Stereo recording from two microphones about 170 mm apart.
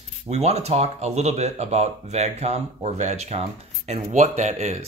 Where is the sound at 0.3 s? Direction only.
40° right (ahead or behind).